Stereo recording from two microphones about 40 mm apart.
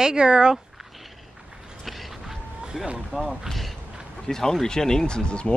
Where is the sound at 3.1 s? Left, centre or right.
Centre.